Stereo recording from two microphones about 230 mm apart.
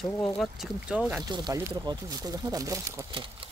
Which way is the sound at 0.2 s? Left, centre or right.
Centre.